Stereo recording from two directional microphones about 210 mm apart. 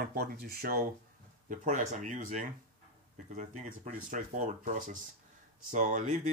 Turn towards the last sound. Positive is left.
turn(degrees=-35)  # may be behind; listen again after turning